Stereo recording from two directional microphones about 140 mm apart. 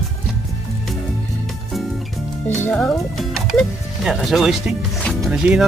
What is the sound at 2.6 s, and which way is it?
Speech, 10° left (ahead or behind).